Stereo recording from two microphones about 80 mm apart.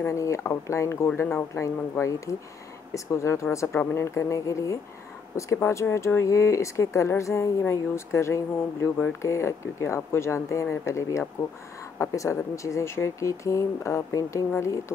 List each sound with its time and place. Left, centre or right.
0.0 s speech: left